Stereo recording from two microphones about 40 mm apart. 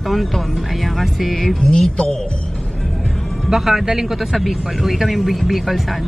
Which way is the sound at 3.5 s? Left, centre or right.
Centre.